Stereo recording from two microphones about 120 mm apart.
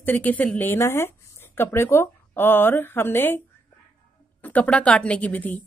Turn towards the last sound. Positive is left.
turn(degrees=15)  # may be behind; listen again after turning